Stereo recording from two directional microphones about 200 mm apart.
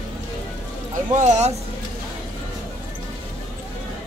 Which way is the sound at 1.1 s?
35° right (ahead or behind).